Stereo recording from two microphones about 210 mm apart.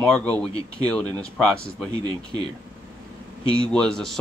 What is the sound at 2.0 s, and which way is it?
Speech, 20° right (ahead or behind).